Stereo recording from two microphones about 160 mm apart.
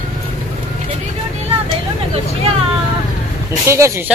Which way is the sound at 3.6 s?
20° right (ahead or behind).